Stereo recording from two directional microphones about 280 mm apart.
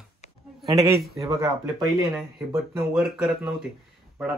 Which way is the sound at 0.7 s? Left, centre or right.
Centre.